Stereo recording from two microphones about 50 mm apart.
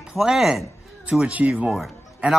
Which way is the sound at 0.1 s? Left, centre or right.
Centre.